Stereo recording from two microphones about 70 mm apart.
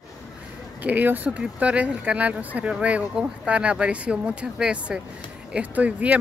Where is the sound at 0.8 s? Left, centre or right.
Right.